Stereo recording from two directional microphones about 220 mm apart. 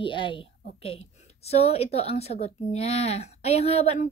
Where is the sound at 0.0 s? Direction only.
20° left (ahead or behind).